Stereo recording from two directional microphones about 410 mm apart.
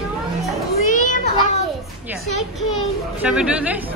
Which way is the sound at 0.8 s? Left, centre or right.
Centre.